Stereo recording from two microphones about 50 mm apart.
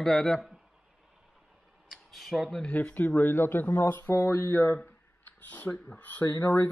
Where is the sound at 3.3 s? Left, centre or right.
Left.